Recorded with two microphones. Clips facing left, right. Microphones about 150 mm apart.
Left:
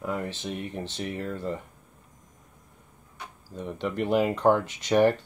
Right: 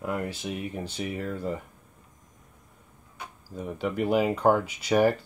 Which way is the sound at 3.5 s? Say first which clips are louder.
Right 1 dB; 10° right (ahead or behind).